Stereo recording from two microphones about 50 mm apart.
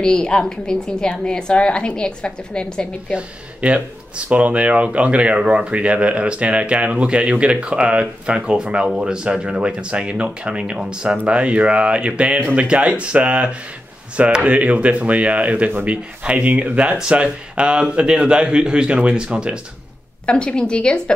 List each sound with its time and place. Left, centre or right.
0.0 s a woman's voice: centre
3.1 s speech: right
20.2 s a woman's voice: centre